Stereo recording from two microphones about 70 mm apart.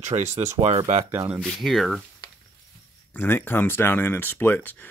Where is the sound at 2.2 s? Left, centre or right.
Left.